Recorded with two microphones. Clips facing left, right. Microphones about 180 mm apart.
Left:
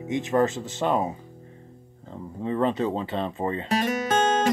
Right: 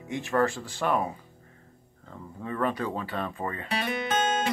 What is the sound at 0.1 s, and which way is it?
Speech, 20° left (ahead or behind).